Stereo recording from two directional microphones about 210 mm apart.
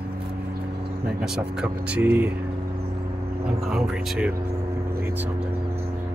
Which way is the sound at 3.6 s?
5° right (ahead or behind).